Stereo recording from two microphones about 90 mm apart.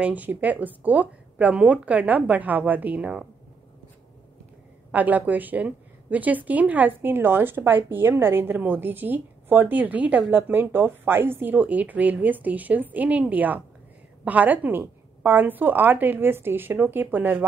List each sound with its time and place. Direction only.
0.0 s a woman's voice: 15° right (ahead or behind)
4.9 s a woman's voice: 20° right (ahead or behind)